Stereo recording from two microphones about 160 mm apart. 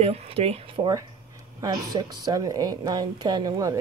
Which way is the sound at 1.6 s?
25° right (ahead or behind).